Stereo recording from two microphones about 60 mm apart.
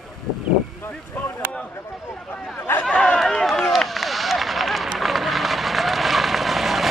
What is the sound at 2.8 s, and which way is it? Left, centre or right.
Run, centre.